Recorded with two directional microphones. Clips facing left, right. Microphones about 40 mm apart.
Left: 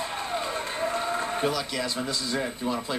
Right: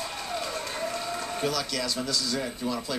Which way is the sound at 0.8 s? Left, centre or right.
Left.